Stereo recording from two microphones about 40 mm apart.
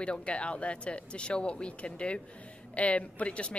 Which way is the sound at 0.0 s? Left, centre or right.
Left.